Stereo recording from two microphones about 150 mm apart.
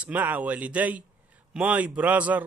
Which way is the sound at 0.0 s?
10° right (ahead or behind).